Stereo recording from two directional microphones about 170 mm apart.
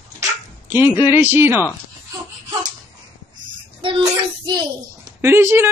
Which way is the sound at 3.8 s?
25° right (ahead or behind).